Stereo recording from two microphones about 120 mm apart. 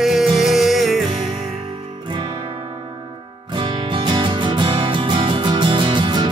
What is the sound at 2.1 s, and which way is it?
Music, 40° right (ahead or behind).